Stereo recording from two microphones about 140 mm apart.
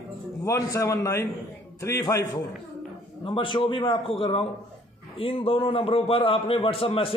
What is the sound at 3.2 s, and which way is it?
A man's voice, 35° left (ahead or behind).